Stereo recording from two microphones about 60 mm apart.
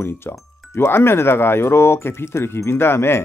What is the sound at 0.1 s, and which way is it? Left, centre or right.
Speech, left.